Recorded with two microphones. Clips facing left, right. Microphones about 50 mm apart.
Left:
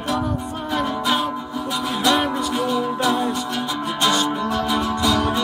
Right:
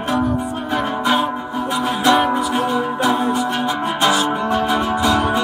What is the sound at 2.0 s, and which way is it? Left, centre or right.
Music, right.